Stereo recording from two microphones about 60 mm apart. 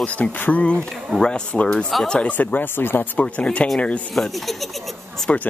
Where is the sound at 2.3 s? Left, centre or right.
Left.